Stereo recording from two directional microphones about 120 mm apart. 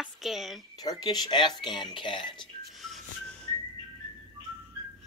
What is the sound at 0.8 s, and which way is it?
Speech, 35° left (ahead or behind).